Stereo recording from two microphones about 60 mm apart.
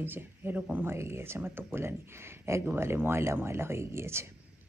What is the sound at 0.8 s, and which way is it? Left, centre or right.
Speech, right.